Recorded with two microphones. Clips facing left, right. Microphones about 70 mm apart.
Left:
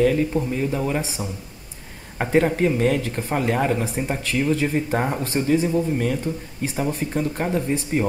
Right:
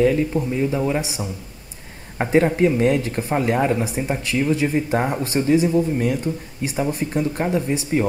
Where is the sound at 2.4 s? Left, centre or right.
Centre.